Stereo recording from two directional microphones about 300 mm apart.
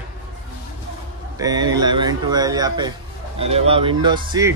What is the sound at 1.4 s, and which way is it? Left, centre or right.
Speech, centre.